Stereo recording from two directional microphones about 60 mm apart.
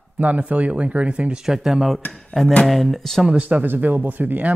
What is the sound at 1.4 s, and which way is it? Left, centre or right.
Speech, centre.